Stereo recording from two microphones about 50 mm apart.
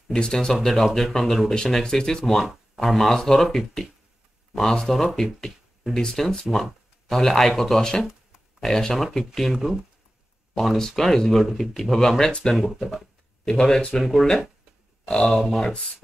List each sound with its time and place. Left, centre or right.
0.1 s speech: centre
2.4 s speech: centre
6.4 s speech: centre
7.1 s speech: centre
10.9 s speech: centre
12.3 s speech: centre
12.7 s speech: centre
15.0 s speech: centre
15.4 s speech: centre